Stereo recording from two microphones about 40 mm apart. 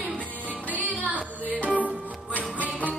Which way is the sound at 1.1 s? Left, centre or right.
Right.